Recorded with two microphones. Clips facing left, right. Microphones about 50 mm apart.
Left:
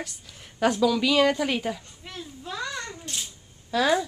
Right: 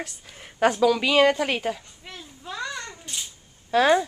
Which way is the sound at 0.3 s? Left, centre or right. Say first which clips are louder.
Right 4 dB; right.